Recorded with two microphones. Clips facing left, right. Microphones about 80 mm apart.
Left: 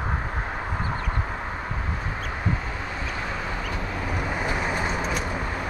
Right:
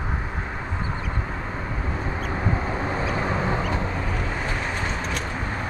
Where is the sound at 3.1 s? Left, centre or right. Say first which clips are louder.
Right 5 dB; right.